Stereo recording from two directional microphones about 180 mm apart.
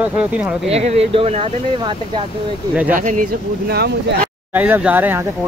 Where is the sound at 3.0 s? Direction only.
45° right (ahead or behind); by 4.3 s 65° right (ahead or behind).